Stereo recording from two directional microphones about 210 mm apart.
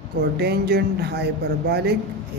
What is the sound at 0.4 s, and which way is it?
Speech, 50° right (ahead or behind).